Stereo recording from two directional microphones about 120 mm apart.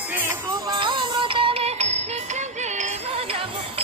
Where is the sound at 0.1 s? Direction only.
20° right (ahead or behind).